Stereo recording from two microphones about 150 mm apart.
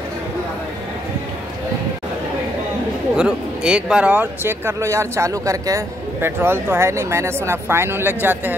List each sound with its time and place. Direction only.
3.2 s speech: 5° right (ahead or behind)